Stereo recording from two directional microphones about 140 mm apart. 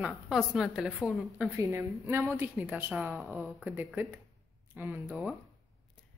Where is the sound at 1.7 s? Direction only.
15° right (ahead or behind).